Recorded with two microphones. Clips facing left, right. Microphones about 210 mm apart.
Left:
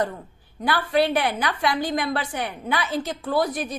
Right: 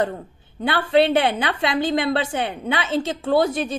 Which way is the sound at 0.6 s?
25° right (ahead or behind).